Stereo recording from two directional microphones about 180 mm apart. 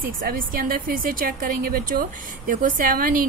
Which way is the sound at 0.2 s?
50° right (ahead or behind).